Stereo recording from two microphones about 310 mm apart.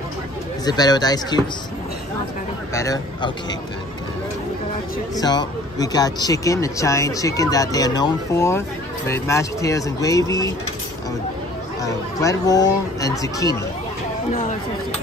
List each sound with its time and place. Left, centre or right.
0.7 s speech: centre
2.7 s speech: centre
5.2 s speech: centre
11.8 s speech: centre
14.3 s speech: left